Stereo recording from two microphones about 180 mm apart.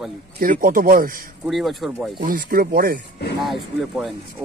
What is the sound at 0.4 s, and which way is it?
Speech, 50° right (ahead or behind).